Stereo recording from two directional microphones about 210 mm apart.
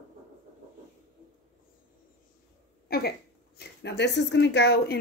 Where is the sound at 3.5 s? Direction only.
55° left (ahead or behind).